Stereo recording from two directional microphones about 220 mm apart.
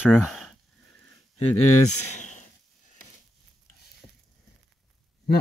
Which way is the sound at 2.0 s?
35° left (ahead or behind).